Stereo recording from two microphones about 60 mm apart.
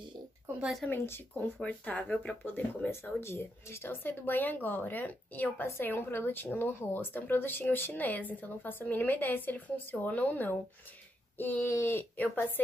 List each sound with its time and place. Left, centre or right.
0.5 s a sound: right
0.8 s speech: left
1.6 s speech: left
2.9 s speech: left